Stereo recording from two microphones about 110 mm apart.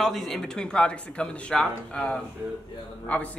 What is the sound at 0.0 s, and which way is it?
Speech, centre (ahead or behind).